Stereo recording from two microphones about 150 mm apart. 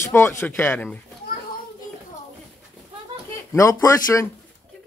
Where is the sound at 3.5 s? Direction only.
20° left (ahead or behind).